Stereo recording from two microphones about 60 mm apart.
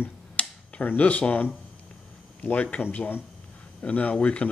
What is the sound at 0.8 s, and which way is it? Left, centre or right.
Speech, left.